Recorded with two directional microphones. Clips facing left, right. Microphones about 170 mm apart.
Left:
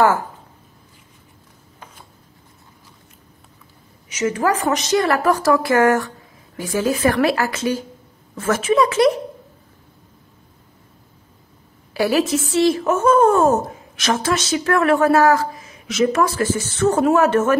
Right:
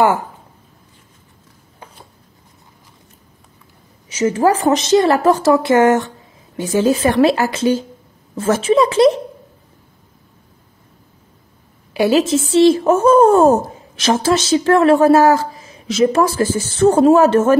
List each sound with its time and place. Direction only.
4.1 s speech: 30° right (ahead or behind)
11.9 s speech: 20° right (ahead or behind)